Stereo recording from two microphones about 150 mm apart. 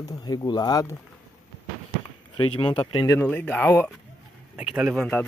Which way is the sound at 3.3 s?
10° left (ahead or behind).